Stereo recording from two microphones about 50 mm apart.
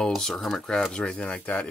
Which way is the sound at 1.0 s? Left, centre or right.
Left.